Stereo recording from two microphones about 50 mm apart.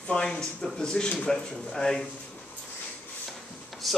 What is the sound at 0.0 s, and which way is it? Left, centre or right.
Speech, left.